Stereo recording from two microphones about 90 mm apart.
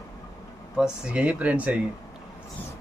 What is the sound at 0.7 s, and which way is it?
Speech, 10° right (ahead or behind).